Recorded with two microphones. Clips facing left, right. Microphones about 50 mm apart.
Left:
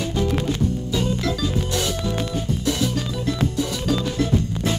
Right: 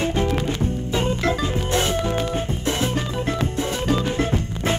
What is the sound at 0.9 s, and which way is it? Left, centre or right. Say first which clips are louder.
Music: right 4 dB; right.